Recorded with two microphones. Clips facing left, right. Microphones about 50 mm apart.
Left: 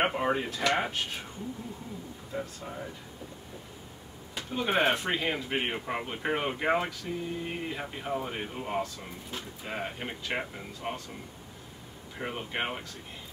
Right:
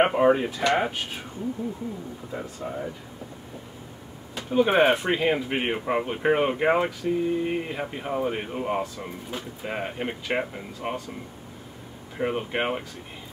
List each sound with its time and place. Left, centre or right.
0.0 s speech: centre
2.3 s speech: centre
4.5 s speech: centre
12.2 s speech: centre